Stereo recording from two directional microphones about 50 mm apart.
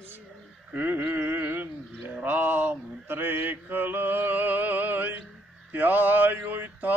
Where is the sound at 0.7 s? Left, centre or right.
Right.